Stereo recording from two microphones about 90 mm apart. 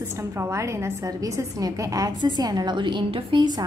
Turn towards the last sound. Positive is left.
turn(degrees=-70)  # may be behind; listen again after turning